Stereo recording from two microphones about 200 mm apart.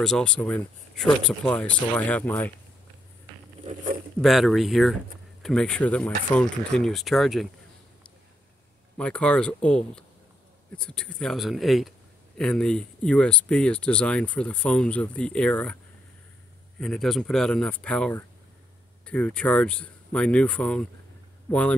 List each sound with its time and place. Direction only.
0.0 s speech: 5° left (ahead or behind)
3.6 s a sound: 40° right (ahead or behind)
4.2 s speech: centre (ahead or behind)
8.9 s speech: 5° left (ahead or behind)
16.8 s speech: 5° left (ahead or behind)